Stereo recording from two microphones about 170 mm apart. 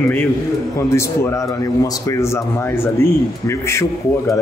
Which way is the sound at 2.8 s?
15° left (ahead or behind).